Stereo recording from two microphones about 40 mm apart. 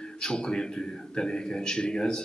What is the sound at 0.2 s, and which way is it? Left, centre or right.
Speech, left.